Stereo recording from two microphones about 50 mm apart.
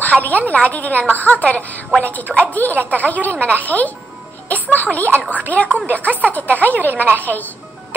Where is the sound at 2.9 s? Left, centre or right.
Left.